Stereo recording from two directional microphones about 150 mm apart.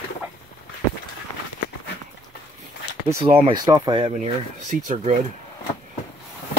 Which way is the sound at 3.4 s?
25° right (ahead or behind).